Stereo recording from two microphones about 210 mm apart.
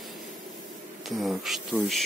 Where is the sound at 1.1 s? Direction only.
Centre (ahead or behind).